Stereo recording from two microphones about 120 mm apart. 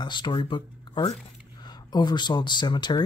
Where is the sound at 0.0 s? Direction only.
40° left (ahead or behind).